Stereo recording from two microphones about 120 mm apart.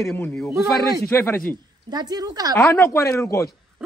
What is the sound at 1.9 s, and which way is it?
Speech, 35° right (ahead or behind).